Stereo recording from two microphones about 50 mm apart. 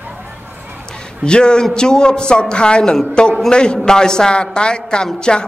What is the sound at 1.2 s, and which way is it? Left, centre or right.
A man's voice, centre.